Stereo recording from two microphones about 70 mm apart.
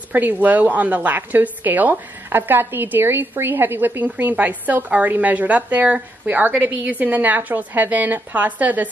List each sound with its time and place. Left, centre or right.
0.1 s a woman's voice: right